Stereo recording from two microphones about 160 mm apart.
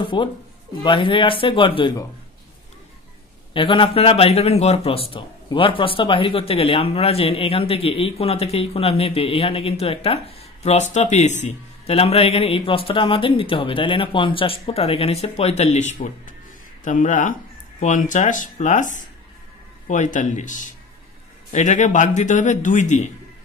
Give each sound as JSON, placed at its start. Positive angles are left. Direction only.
{"t": 0.0, "sound": "speech", "side_deg": 30}
{"t": 3.5, "sound": "speech", "side_deg": 30}